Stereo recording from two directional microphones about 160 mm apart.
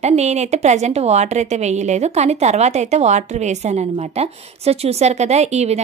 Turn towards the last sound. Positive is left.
turn(degrees=-40)  # may be behind; listen again after turning